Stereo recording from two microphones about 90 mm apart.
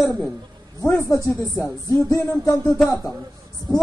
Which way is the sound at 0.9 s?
30° left (ahead or behind).